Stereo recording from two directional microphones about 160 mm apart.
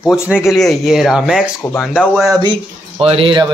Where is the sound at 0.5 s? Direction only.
Centre (ahead or behind).